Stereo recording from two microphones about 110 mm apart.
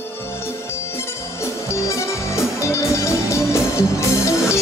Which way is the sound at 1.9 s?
25° left (ahead or behind).